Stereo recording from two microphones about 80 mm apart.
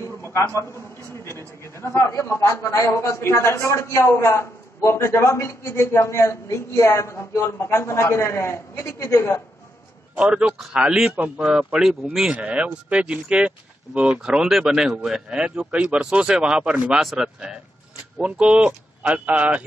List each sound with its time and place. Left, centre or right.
0.2 s a sound: left
1.2 s a man's voice: left
10.1 s speech: centre